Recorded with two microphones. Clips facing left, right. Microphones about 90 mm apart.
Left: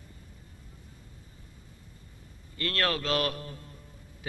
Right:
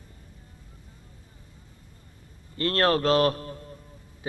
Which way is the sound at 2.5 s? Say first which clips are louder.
Right 7 dB; 35° right (ahead or behind).